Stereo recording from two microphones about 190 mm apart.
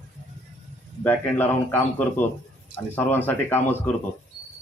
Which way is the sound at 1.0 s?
10° left (ahead or behind).